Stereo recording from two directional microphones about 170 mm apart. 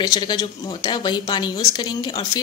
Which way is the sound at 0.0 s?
25° left (ahead or behind).